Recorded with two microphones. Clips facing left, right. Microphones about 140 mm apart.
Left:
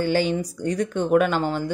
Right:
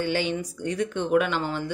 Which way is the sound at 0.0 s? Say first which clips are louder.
Left 4 dB; 40° left (ahead or behind).